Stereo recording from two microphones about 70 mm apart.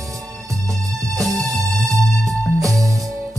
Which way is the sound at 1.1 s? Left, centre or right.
Centre.